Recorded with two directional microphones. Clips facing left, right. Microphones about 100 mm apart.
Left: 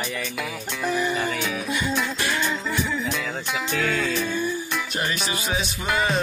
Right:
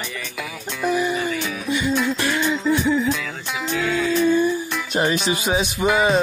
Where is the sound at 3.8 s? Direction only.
15° right (ahead or behind).